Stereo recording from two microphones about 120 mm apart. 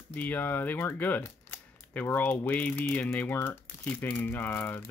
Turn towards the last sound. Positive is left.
turn(degrees=15)  # may be behind; listen again after turning